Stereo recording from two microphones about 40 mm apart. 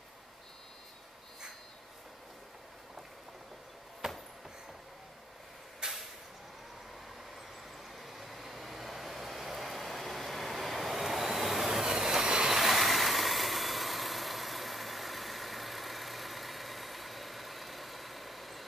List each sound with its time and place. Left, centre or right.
4.0 s train: centre
5.8 s a sound: centre
7.9 s vehicle: centre
12.4 s vehicle: centre